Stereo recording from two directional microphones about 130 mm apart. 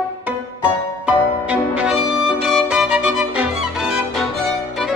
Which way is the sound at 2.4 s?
5° right (ahead or behind).